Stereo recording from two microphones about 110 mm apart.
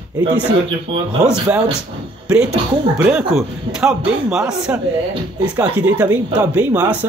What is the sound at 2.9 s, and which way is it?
Speech, 15° right (ahead or behind).